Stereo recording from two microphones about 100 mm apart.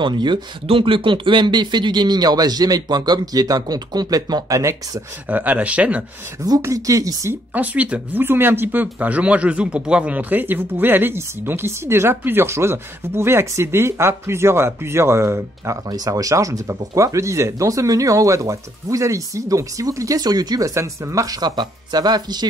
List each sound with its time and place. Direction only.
0.0 s speech: 50° right (ahead or behind)
0.7 s speech: 60° right (ahead or behind); by 5.0 s 35° right (ahead or behind)
5.3 s speech: 15° right (ahead or behind)
6.6 s speech: 30° right (ahead or behind)
7.5 s speech: 15° right (ahead or behind); by 22.5 s 45° right (ahead or behind)